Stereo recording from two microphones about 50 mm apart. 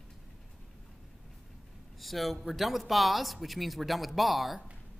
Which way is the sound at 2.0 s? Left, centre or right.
Centre.